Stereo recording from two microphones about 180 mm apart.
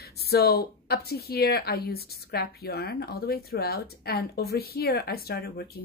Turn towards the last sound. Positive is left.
turn(degrees=60)  # may be behind; listen again after turning